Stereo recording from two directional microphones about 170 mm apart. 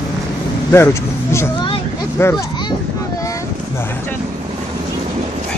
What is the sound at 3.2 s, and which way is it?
Boat, 20° left (ahead or behind).